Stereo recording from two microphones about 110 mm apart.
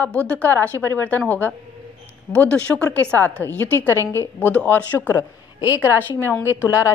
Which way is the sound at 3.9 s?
25° right (ahead or behind).